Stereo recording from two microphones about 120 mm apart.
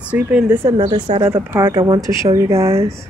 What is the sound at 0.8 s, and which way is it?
Speech, 40° right (ahead or behind).